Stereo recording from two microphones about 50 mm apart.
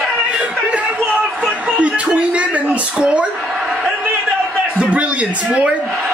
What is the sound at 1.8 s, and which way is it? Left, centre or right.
Music, right.